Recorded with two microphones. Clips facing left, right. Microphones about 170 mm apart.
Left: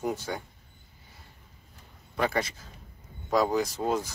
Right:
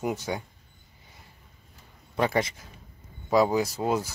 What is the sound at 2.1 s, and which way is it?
Speech, 20° right (ahead or behind).